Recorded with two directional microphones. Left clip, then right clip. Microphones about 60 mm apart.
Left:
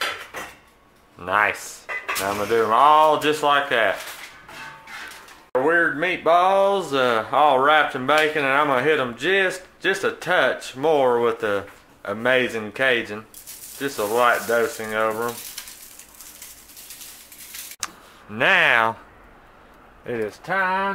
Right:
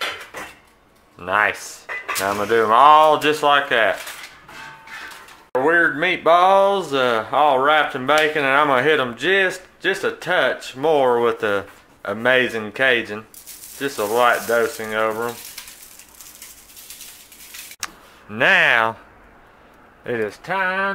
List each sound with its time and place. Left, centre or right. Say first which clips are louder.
1.2 s speech: right 2 dB; right
2.4 s speech: right 4 dB; right
5.6 s speech: right 3 dB; right; by 8.1 s centre
8.3 s speech: right 3 dB; right
15.6 s frying: even; centre
18.3 s speech: right 2 dB; right
20.1 s speech: right 4 dB; right
20.6 s speech: right 2 dB; right